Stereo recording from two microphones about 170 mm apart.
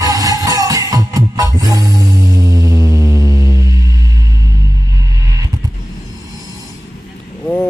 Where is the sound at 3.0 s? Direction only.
20° left (ahead or behind).